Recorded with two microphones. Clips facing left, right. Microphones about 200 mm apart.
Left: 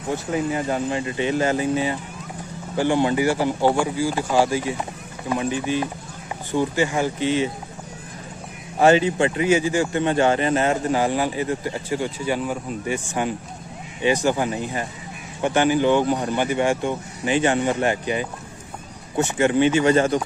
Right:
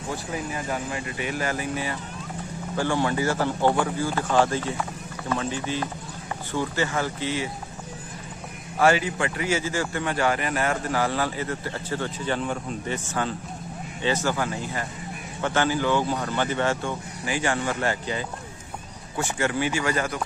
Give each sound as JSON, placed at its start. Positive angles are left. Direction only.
{"t": 0.1, "sound": "speech", "side_deg": 25}
{"t": 8.7, "sound": "speech", "side_deg": 25}